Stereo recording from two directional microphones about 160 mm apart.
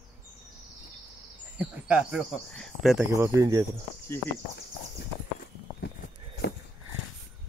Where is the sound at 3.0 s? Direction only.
20° right (ahead or behind).